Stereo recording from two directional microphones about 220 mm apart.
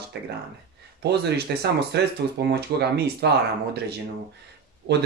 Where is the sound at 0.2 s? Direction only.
50° right (ahead or behind).